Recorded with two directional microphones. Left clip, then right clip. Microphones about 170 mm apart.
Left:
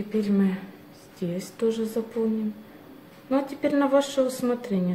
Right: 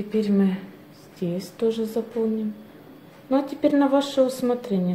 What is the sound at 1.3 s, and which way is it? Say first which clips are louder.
Speech: right 2 dB; 5° right (ahead or behind).